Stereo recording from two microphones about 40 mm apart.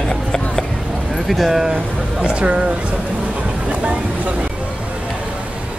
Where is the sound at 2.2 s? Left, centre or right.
Right.